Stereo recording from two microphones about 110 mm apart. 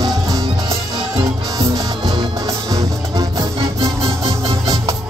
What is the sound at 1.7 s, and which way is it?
Music, 35° right (ahead or behind).